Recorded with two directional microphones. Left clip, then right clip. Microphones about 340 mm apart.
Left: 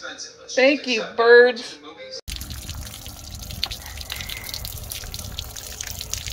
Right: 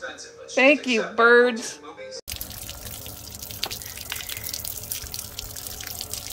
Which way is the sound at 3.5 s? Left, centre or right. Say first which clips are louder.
Left 3 dB; centre.